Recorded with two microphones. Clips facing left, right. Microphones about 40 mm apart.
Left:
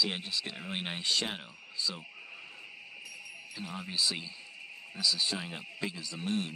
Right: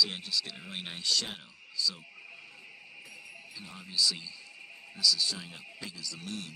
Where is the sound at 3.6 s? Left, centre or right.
Left.